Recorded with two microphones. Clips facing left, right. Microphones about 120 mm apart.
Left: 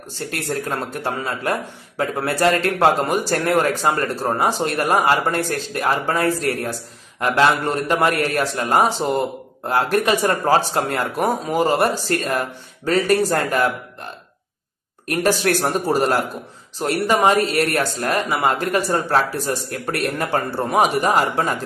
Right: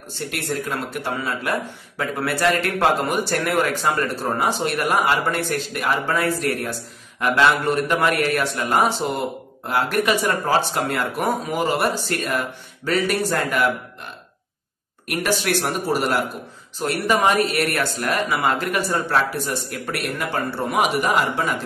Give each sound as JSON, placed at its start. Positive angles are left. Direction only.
{"t": 0.3, "sound": "speech", "side_deg": 40}
{"t": 15.0, "sound": "speech", "side_deg": 40}